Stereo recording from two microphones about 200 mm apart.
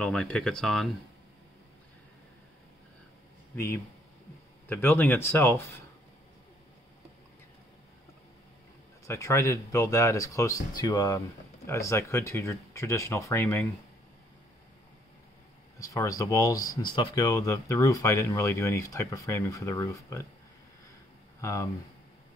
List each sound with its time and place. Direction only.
0.0 s speech: 5° left (ahead or behind)
3.5 s speech: 10° left (ahead or behind)
9.0 s speech: 15° left (ahead or behind)
15.8 s speech: 15° left (ahead or behind)
21.4 s speech: 15° left (ahead or behind)